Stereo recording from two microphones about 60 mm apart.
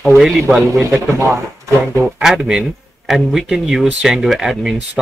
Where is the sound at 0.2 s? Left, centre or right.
Centre.